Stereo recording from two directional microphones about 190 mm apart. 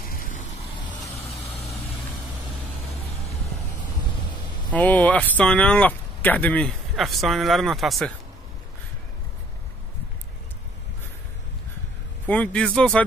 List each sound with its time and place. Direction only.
0.0 s vehicle: 50° left (ahead or behind)
4.6 s speech: 10° left (ahead or behind)
12.3 s a man's voice: 5° left (ahead or behind)